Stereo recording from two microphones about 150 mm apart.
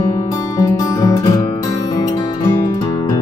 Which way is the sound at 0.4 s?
25° left (ahead or behind).